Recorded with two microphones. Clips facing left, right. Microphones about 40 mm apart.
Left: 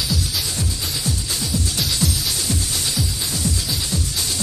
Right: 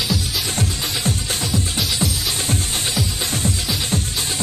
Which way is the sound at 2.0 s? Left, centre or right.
Right.